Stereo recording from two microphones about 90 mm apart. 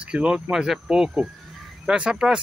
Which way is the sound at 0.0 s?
10° right (ahead or behind).